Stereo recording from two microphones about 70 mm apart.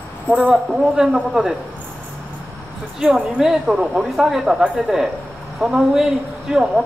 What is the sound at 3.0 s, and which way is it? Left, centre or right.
A woman's voice, centre.